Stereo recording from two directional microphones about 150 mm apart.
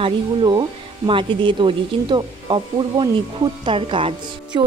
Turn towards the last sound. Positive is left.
turn(degrees=-35)  # may be behind; listen again after turning